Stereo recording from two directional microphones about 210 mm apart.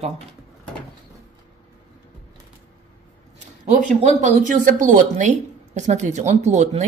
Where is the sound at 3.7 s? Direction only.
35° right (ahead or behind).